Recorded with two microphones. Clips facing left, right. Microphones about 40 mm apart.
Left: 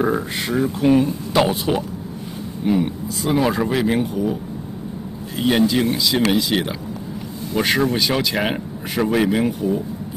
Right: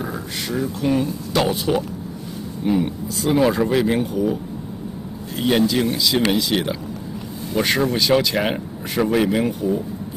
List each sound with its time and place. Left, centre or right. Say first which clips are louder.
0.0 s speech: left 7 dB; left
1.4 s speech: left 1 dB; centre
5.4 s speech: left 1 dB; centre